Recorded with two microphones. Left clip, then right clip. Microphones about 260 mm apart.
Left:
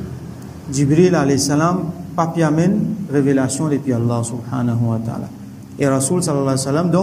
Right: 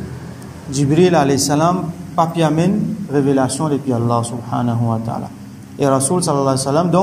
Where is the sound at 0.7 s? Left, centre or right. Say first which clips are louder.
Right 1 dB; centre.